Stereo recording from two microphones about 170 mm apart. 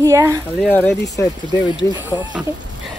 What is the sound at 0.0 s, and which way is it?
Speech, 20° right (ahead or behind).